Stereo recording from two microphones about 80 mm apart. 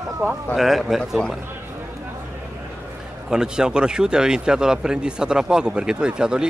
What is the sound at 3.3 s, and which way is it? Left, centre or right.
Speech, centre.